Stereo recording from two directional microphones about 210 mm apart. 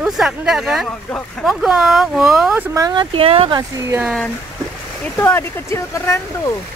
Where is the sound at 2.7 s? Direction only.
20° right (ahead or behind).